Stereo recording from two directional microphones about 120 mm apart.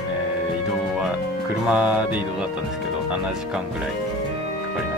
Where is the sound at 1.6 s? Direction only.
10° right (ahead or behind).